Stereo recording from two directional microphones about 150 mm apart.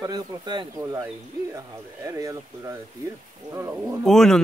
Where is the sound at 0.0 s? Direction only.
30° right (ahead or behind).